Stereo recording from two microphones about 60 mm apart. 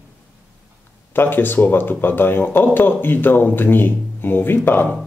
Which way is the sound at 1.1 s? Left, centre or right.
Left.